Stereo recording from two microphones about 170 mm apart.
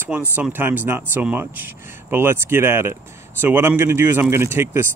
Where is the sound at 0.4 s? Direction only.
10° right (ahead or behind).